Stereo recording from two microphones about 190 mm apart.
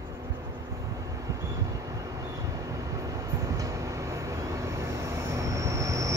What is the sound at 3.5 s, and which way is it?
Vehicle, 15° right (ahead or behind).